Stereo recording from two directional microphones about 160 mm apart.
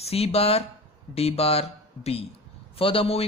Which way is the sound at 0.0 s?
40° left (ahead or behind).